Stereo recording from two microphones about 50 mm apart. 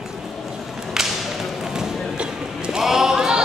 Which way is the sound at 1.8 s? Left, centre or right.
Centre.